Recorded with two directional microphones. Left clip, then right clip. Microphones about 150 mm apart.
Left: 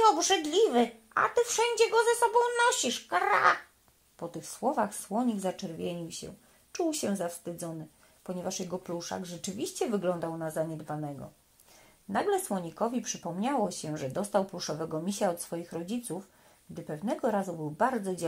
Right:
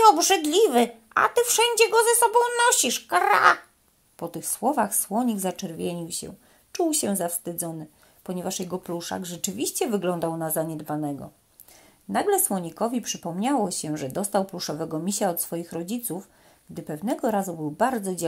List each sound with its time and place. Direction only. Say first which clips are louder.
0.0 s speech: right 7 dB; 30° right (ahead or behind)
10.1 s speech: right 6 dB; 40° right (ahead or behind)
12.1 s speech: right 6 dB; 20° right (ahead or behind)